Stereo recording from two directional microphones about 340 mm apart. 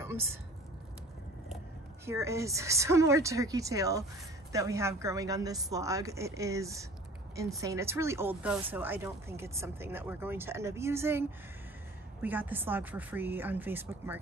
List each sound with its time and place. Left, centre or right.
0.0 s speech: centre
2.0 s speech: centre